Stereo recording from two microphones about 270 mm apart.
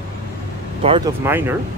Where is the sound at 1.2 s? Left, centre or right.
Centre.